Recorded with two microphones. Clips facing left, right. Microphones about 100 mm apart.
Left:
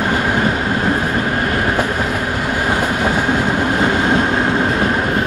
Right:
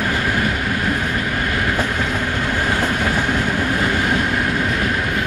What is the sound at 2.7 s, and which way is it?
Train, 20° left (ahead or behind).